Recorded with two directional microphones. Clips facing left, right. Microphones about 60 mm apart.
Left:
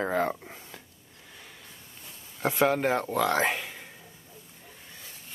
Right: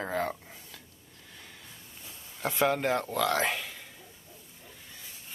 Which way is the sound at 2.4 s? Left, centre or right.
Centre.